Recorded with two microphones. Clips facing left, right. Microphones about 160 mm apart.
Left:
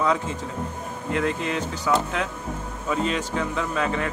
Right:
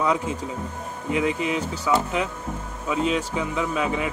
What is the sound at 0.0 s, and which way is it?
Speech, 5° right (ahead or behind).